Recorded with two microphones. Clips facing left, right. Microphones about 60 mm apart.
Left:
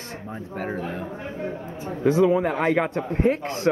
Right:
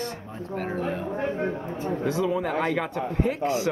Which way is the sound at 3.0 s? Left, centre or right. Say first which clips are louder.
Left 2 dB; left.